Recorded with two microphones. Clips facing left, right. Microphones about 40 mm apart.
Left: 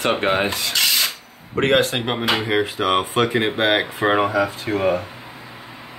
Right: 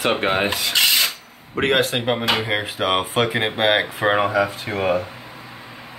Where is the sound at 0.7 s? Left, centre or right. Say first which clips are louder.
Right 2 dB; right.